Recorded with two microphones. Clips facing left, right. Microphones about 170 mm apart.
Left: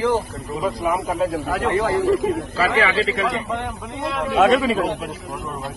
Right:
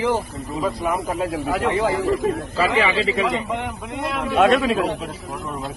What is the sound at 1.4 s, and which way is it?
A man's voice, 20° right (ahead or behind).